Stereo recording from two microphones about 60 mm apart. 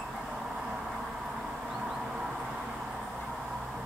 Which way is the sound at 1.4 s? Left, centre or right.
Centre.